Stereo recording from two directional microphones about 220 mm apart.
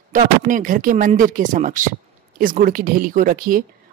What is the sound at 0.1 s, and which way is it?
A woman's voice, 35° right (ahead or behind).